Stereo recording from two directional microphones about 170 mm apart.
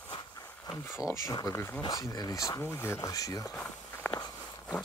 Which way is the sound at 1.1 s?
20° left (ahead or behind).